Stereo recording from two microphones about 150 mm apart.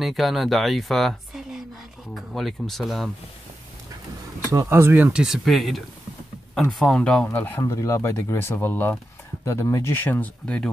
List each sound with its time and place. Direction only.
0.0 s speech: centre (ahead or behind)
4.5 s speech: 20° right (ahead or behind); by 10.7 s 5° left (ahead or behind)